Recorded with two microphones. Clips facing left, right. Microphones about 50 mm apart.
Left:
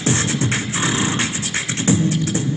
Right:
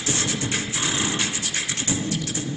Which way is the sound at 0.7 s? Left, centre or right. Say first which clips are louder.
Left 5 dB; left.